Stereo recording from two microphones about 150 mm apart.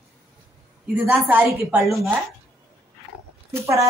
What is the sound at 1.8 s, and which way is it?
Speech, centre (ahead or behind).